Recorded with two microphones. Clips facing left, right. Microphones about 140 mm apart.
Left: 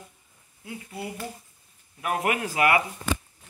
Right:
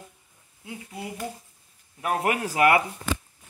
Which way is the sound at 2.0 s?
30° right (ahead or behind).